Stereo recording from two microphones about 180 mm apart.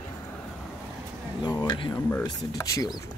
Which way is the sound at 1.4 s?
20° left (ahead or behind).